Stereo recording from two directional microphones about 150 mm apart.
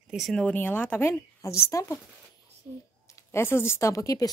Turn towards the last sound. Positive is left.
turn(degrees=20)  # may be behind; listen again after turning